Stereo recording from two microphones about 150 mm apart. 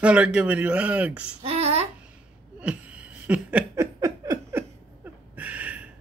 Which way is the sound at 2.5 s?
10° right (ahead or behind).